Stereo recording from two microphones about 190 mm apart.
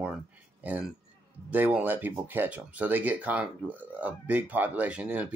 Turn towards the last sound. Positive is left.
turn(degrees=-5)  # may be behind; listen again after turning